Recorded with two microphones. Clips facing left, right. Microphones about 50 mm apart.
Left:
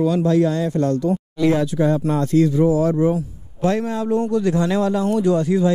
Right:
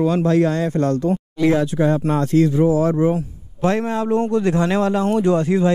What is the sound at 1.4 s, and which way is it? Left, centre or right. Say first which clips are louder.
A man's voice: right 1 dB; right.